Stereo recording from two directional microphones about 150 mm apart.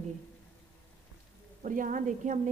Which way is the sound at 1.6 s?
60° right (ahead or behind).